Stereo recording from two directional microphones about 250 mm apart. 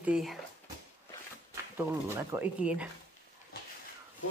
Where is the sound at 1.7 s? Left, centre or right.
Centre.